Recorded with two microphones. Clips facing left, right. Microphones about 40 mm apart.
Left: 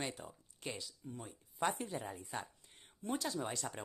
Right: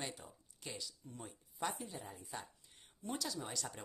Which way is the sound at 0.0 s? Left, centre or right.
Left.